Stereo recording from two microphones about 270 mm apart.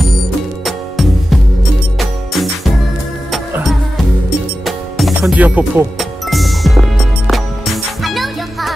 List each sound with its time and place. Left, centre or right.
0.7 s music: centre